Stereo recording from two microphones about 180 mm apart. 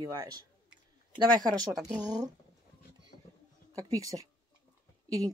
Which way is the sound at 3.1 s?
55° left (ahead or behind).